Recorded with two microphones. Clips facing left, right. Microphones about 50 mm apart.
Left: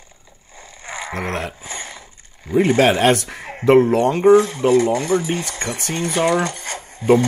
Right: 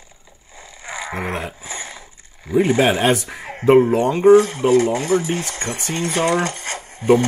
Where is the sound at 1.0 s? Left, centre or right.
Centre.